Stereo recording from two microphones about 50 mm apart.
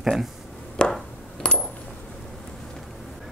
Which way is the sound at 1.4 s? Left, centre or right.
Centre.